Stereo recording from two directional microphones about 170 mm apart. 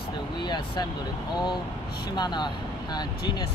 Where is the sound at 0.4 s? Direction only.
25° left (ahead or behind).